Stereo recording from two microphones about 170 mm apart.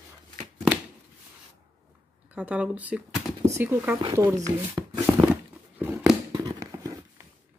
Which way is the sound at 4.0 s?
20° right (ahead or behind).